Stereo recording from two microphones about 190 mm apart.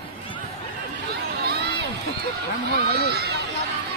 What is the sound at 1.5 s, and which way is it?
Crowd, 60° right (ahead or behind).